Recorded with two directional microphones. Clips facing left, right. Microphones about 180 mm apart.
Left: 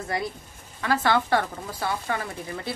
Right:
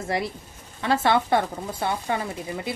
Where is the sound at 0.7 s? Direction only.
25° right (ahead or behind).